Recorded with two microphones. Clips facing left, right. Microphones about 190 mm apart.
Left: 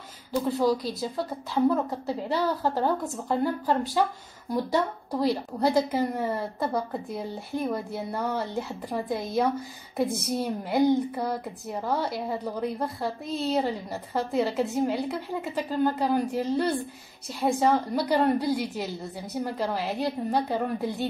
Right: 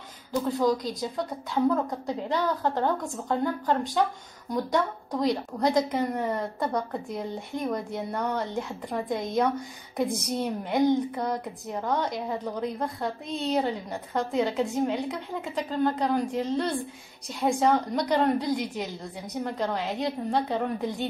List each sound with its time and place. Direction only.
0.3 s a woman's voice: 10° left (ahead or behind)